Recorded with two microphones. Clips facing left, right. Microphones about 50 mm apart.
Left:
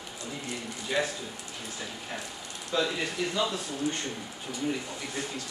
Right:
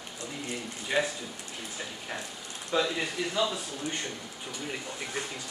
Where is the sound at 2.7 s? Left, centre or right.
Centre.